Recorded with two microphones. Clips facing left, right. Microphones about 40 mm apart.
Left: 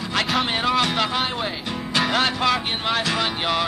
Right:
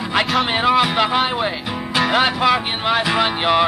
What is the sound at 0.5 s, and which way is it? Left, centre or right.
Music, centre.